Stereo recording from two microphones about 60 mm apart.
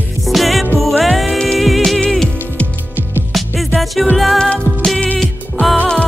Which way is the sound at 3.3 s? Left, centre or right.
Centre.